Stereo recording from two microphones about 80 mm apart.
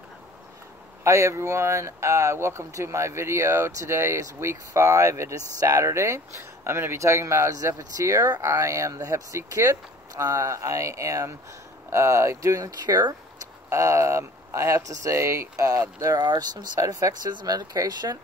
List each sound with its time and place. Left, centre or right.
1.0 s speech: right
17.3 s speech: right
17.6 s speech: right